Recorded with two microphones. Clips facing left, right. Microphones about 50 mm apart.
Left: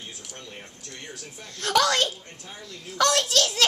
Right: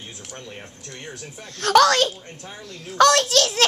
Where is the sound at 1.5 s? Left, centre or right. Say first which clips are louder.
Right 7 dB; right.